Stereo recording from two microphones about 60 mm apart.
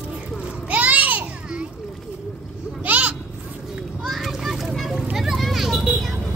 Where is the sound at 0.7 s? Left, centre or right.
Right.